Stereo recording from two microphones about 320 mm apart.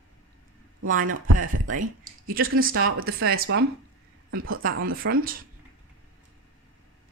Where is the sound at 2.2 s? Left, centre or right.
Right.